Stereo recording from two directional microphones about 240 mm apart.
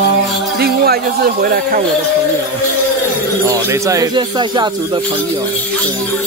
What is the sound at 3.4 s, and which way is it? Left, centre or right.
Speech, centre.